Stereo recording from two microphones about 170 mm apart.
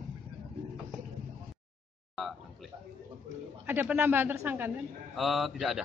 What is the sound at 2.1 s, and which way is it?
Speech, centre (ahead or behind).